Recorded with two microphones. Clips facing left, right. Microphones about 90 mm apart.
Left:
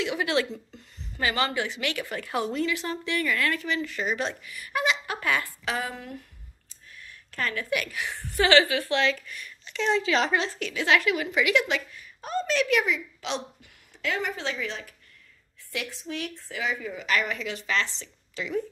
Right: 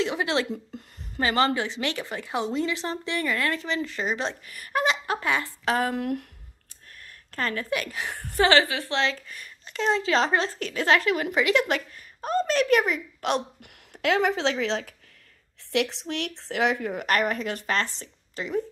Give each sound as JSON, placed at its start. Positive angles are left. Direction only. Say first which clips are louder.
{"t": 0.0, "sound": "a woman's voice", "louder": "right 1 dB", "side_deg": -30}
{"t": 4.5, "sound": "a woman's voice", "louder": "right 3 dB", "side_deg": -40}
{"t": 5.7, "sound": "a woman's voice", "louder": "right 8 dB", "side_deg": -50}
{"t": 7.0, "sound": "a woman's voice", "louder": "right 2 dB", "side_deg": -35}
{"t": 8.1, "sound": "a woman's voice", "louder": "right 1 dB", "side_deg": -45}
{"t": 9.4, "sound": "a woman's voice", "louder": "right 1 dB", "side_deg": -40}